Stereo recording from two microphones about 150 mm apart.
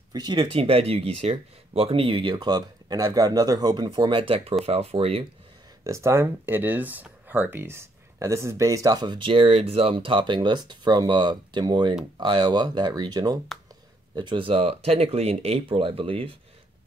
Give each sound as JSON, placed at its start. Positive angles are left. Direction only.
{"t": 0.1, "sound": "speech", "side_deg": -30}
{"t": 5.9, "sound": "speech", "side_deg": -20}